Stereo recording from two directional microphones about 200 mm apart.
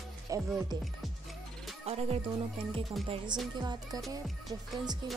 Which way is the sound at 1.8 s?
30° right (ahead or behind).